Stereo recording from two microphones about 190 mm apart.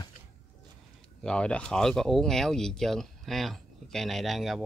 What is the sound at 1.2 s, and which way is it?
Speech, 5° left (ahead or behind).